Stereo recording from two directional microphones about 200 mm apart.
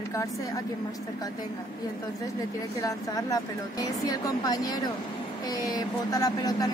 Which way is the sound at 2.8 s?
20° left (ahead or behind).